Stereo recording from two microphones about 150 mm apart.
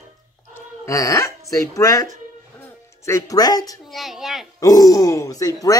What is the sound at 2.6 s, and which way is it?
Music, 20° left (ahead or behind).